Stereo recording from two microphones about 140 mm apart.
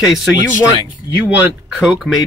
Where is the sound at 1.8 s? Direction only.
Centre (ahead or behind).